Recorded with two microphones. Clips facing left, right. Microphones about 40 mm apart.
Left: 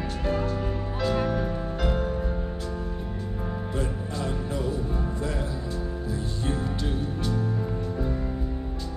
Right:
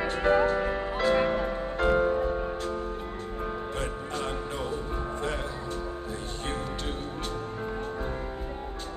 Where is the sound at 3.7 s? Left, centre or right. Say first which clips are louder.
Left 2 dB; right.